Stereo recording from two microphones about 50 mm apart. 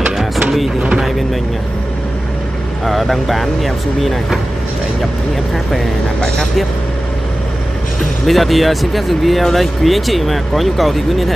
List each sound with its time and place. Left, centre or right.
2.8 s speech: centre
8.3 s speech: centre